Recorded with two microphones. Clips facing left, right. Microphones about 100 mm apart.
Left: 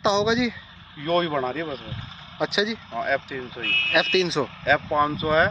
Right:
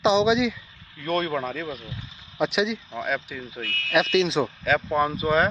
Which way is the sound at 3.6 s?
45° left (ahead or behind).